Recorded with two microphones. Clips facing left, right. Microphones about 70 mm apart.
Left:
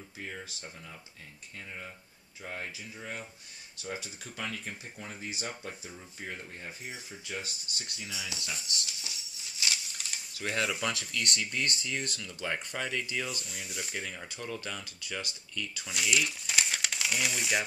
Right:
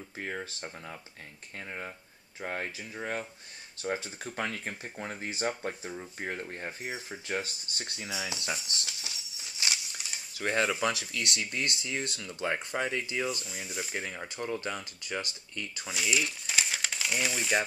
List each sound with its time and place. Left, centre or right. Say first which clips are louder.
2.4 s speech: right 5 dB; right
9.6 s a sound: right 1 dB; right
10.3 s speech: right 4 dB; right
10.8 s speech: right 3 dB; centre
13.4 s speech: right 2 dB; centre
14.1 s speech: right 4 dB; right
15.9 s speech: even; centre